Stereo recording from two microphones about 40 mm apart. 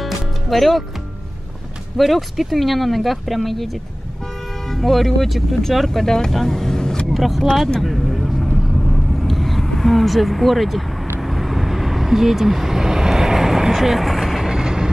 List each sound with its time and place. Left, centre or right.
0.0 s music: centre
2.0 s speech: centre
7.1 s speech: centre
8.8 s vehicle: centre
14.5 s vehicle: centre